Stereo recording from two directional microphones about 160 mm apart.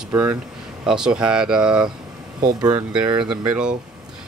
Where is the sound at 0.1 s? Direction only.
15° right (ahead or behind).